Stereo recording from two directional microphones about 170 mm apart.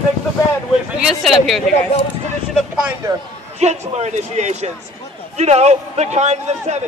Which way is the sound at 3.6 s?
40° right (ahead or behind).